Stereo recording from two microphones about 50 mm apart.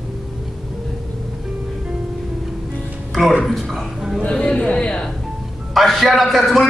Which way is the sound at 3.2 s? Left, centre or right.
Centre.